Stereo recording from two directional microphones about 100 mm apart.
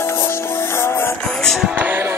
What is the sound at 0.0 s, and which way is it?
Music, 25° left (ahead or behind).